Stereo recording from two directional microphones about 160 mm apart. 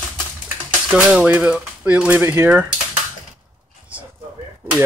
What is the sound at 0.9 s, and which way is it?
Speech, 5° right (ahead or behind).